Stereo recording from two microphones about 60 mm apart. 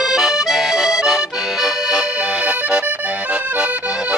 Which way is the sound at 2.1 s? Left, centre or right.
Right.